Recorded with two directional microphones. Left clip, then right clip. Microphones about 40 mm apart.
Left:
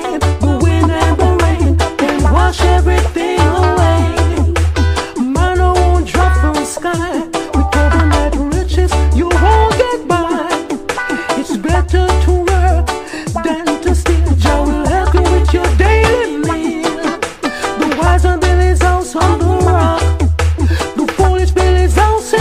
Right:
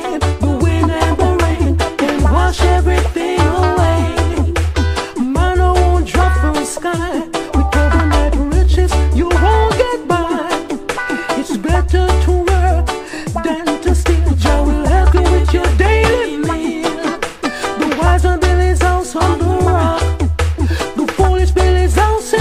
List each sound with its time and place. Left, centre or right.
0.1 s music: right